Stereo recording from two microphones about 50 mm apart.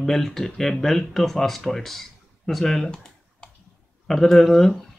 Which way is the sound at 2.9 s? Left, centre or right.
Centre.